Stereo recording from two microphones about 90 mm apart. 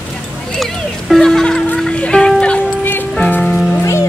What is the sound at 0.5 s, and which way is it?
Sheep, centre (ahead or behind).